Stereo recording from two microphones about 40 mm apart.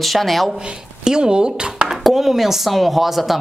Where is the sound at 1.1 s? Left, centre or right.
Centre.